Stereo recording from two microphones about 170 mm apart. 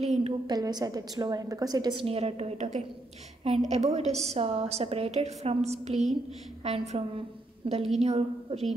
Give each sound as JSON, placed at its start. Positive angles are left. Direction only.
{"t": 0.5, "sound": "a woman's voice", "side_deg": -25}